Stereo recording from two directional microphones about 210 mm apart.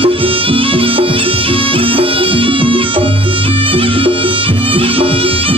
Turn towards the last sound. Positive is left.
turn(degrees=-25)  # may be behind; listen again after turning